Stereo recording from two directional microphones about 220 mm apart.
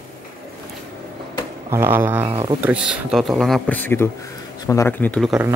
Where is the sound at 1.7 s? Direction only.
10° right (ahead or behind).